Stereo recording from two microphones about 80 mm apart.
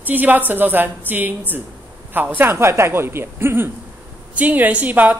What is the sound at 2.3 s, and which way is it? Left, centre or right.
A woman's voice, right.